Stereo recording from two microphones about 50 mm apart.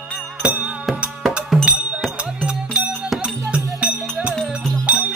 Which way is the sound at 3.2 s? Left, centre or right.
Right.